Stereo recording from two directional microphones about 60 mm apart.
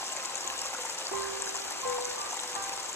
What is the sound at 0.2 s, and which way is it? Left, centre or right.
Music, left.